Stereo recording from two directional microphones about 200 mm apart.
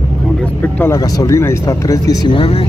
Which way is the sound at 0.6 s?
10° left (ahead or behind).